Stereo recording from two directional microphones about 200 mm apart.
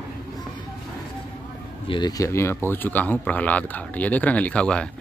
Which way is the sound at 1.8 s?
25° left (ahead or behind).